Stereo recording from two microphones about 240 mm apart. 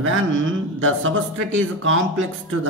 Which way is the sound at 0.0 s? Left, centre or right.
Right.